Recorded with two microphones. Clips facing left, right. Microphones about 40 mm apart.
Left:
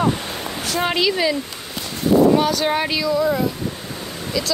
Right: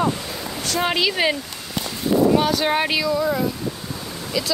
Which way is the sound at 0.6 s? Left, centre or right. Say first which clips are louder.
Even; centre.